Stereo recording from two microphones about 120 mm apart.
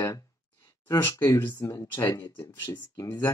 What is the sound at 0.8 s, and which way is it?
Speech, 20° left (ahead or behind).